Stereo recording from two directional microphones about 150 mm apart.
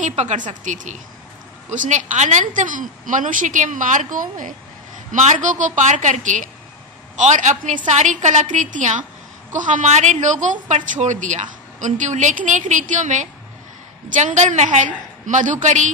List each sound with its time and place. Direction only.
0.0 s a woman's voice: 50° right (ahead or behind)